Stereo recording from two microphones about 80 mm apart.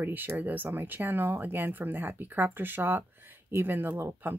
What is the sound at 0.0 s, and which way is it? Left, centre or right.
Speech, right.